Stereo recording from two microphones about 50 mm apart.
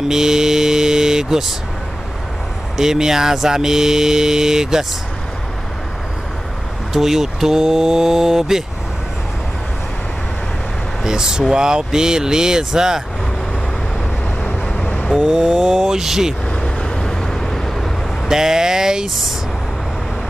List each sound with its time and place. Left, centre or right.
0.1 s vehicle: centre
2.8 s speech: centre
6.9 s speech: centre
11.1 s speech: centre
14.7 s vehicle: left
15.1 s speech: centre
16.6 s vehicle: centre
18.3 s speech: centre